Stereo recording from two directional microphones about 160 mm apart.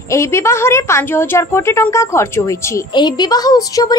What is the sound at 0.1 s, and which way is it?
A woman's voice, 15° left (ahead or behind).